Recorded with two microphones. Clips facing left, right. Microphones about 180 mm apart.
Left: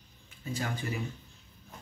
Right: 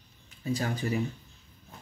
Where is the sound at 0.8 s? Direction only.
35° right (ahead or behind).